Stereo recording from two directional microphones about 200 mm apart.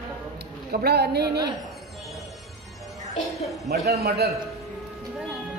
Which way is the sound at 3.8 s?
50° right (ahead or behind).